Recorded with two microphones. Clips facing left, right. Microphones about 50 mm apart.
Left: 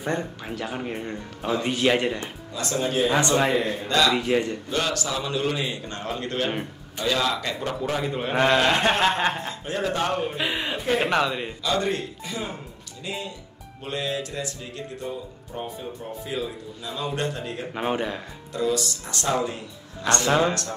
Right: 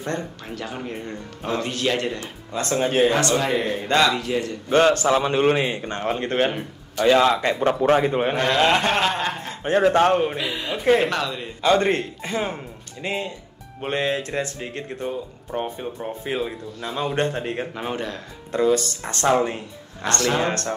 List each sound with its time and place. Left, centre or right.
0.0 s a man's voice: centre
2.5 s speech: right
3.1 s speech: left
3.8 s speech: right
4.1 s speech: left
4.6 s speech: right
9.0 s speech: centre
9.5 s speech: right
10.3 s speech: left
11.6 s speech: right
17.7 s a man's voice: centre
18.5 s speech: right